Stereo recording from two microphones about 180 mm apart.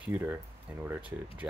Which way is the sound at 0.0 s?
10° right (ahead or behind).